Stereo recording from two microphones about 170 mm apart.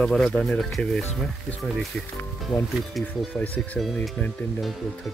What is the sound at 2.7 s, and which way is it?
Speech, centre (ahead or behind).